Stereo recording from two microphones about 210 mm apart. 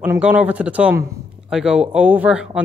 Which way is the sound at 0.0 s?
10° right (ahead or behind).